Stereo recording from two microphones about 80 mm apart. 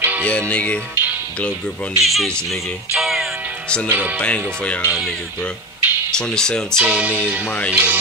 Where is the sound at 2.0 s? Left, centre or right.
Centre.